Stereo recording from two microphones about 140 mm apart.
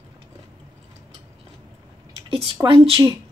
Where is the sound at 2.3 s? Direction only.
40° right (ahead or behind).